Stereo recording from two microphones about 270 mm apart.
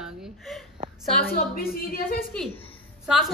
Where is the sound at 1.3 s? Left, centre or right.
Left.